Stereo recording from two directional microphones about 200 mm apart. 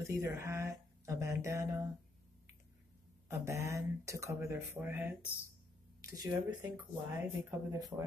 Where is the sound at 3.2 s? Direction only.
15° right (ahead or behind).